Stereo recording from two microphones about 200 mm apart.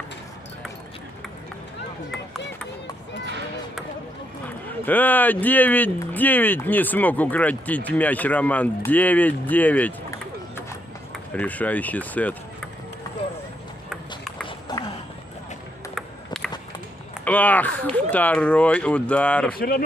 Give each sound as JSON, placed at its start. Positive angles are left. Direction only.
{"t": 4.8, "sound": "speech", "side_deg": 10}
{"t": 11.3, "sound": "speech", "side_deg": 10}
{"t": 14.7, "sound": "a sound", "side_deg": 20}
{"t": 17.2, "sound": "speech", "side_deg": 10}